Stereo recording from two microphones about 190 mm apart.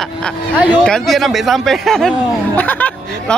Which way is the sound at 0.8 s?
Centre (ahead or behind).